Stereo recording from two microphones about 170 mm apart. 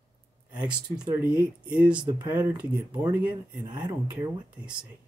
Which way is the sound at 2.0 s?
25° right (ahead or behind).